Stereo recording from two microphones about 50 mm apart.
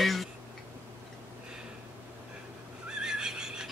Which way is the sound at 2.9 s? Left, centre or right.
Centre.